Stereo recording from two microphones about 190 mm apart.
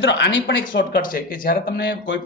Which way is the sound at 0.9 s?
50° left (ahead or behind).